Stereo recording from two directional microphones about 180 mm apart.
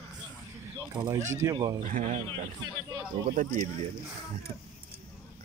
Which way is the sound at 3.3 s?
50° right (ahead or behind).